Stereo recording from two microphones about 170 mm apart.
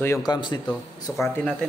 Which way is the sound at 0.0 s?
20° left (ahead or behind).